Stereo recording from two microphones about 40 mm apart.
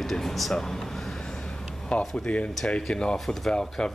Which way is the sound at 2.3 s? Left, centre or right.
Left.